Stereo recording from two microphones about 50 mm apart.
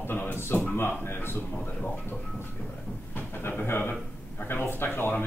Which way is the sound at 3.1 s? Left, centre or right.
Left.